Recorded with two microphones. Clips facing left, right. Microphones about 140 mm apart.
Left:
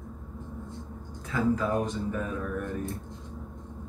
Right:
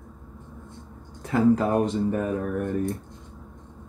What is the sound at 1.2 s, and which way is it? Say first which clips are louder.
Speech: right 6 dB; 65° right (ahead or behind).